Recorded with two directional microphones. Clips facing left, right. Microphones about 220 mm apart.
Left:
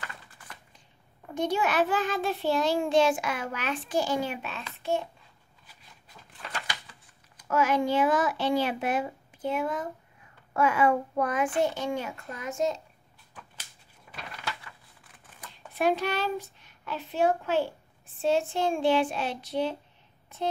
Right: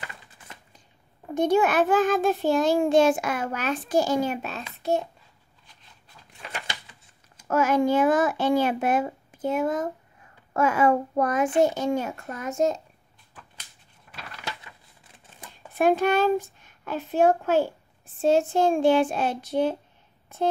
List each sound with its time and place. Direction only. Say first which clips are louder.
1.3 s a child's voice: right 6 dB; 50° right (ahead or behind)
7.4 s a child's voice: right 4 dB; 45° right (ahead or behind)
14.1 s a sound: even; centre (ahead or behind)
15.7 s a woman's voice: right 6 dB; 50° right (ahead or behind)